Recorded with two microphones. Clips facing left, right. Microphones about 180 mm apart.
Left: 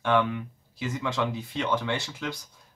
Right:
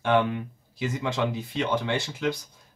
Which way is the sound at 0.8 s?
20° right (ahead or behind).